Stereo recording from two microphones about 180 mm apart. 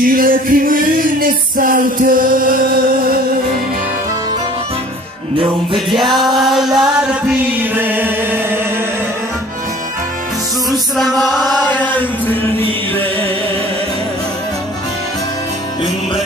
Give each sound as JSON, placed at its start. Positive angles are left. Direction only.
{"t": 0.0, "sound": "music", "side_deg": -50}
{"t": 5.9, "sound": "music", "side_deg": 0}
{"t": 6.4, "sound": "chant", "side_deg": 0}
{"t": 11.1, "sound": "chant", "side_deg": 0}